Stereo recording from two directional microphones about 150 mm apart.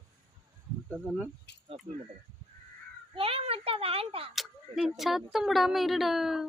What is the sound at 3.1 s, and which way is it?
A child's voice, 40° right (ahead or behind).